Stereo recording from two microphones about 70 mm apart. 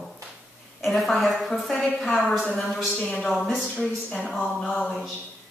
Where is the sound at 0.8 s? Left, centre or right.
Centre.